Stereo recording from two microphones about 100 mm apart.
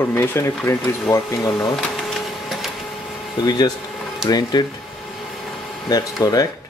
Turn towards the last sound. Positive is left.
turn(degrees=40)  # may be behind; listen again after turning